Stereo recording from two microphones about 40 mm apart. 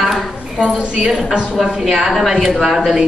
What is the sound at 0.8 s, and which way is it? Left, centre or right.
Speech, right.